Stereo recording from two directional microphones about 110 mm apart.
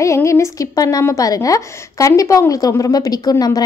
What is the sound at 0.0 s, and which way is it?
A woman's voice, 25° left (ahead or behind).